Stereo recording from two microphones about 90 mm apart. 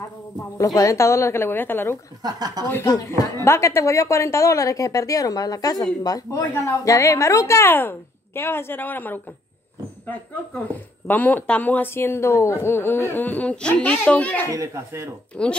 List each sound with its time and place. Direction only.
0.7 s a man's voice: 35° left (ahead or behind)
2.2 s speech: 45° right (ahead or behind)
2.8 s speech: 45° left (ahead or behind)
3.4 s a woman's voice: 30° left (ahead or behind)
11.1 s a man's voice: 20° left (ahead or behind)
14.5 s speech: 35° right (ahead or behind)
15.3 s speech: 15° left (ahead or behind)